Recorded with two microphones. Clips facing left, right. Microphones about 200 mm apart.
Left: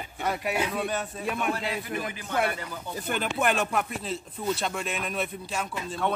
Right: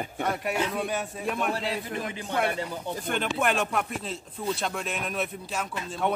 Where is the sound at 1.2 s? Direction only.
Centre (ahead or behind).